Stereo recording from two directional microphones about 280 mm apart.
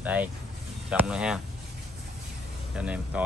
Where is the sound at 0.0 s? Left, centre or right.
Centre.